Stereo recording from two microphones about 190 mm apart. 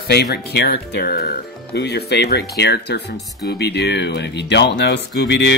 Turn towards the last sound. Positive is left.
turn(degrees=65)  # may be behind; listen again after turning